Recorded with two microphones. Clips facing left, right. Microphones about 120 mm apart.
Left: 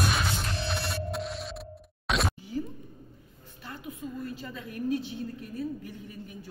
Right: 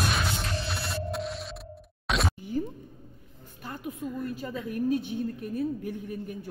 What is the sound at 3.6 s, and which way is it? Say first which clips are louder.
A woman's voice: right 4 dB; 45° right (ahead or behind).